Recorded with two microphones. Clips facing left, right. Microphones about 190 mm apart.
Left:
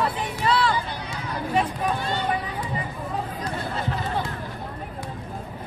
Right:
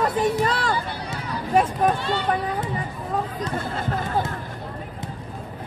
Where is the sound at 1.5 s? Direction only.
45° right (ahead or behind).